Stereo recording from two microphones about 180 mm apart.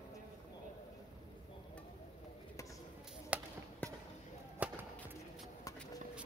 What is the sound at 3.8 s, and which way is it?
Basketball bounce, 10° left (ahead or behind).